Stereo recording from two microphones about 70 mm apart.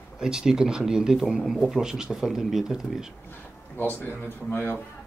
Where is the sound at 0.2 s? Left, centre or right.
Centre.